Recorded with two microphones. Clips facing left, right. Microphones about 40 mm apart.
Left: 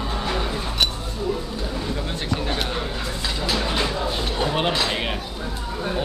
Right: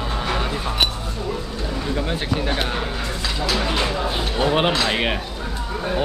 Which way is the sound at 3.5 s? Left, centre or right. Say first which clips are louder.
Right 1 dB; centre.